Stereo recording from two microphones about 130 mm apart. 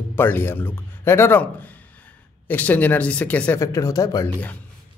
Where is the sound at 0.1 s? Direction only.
15° left (ahead or behind).